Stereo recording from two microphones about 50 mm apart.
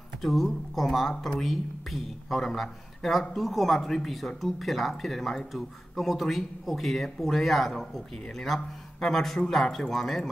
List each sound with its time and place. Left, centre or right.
0.2 s speech: centre